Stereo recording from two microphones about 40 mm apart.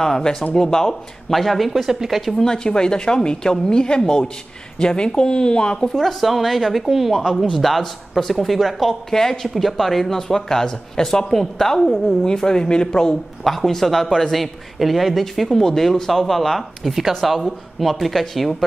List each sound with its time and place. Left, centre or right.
0.0 s speech: centre
1.3 s speech: centre
2.3 s speech: centre
5.9 s speech: centre